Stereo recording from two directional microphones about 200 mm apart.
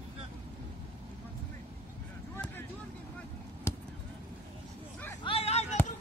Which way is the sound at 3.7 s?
15° left (ahead or behind).